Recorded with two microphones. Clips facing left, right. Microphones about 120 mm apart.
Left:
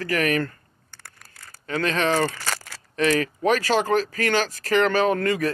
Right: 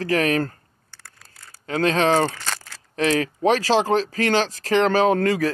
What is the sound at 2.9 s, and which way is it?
Speech, 30° right (ahead or behind).